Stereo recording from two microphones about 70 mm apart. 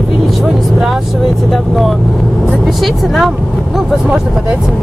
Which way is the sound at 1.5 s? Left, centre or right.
Centre.